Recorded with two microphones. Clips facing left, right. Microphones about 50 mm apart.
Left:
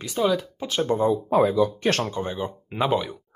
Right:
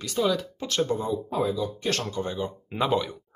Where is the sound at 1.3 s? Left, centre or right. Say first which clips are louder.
Left 8 dB; left.